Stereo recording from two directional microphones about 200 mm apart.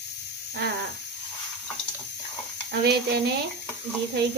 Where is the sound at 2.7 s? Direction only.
55° right (ahead or behind).